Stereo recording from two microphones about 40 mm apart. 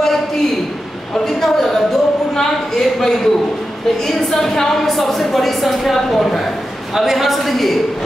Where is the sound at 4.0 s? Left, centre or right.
Centre.